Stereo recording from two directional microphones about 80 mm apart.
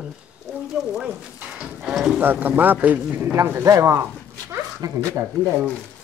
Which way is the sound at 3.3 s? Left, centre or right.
Right.